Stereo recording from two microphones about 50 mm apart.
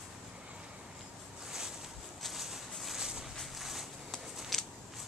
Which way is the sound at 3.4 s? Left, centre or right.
Centre.